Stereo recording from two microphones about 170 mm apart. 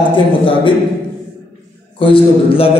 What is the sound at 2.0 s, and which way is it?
Speech, 30° left (ahead or behind).